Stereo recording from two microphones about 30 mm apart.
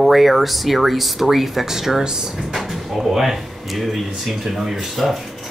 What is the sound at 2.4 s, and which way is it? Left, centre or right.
Speech, centre.